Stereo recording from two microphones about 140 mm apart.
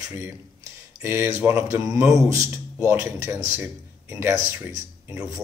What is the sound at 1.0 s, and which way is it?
Speech, 20° right (ahead or behind).